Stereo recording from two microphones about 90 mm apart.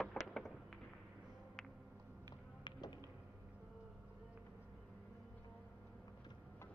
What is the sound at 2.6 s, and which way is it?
Music, 60° left (ahead or behind).